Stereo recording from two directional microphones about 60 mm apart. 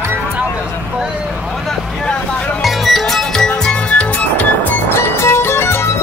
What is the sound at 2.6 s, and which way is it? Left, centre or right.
Music, centre.